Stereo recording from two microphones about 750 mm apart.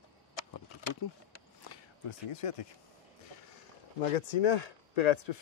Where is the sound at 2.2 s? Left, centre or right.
Left.